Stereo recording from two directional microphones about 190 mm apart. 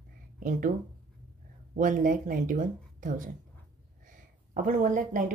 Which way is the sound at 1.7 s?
45° right (ahead or behind).